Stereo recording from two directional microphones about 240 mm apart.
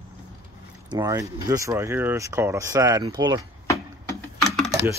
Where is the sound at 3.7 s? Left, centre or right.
Centre.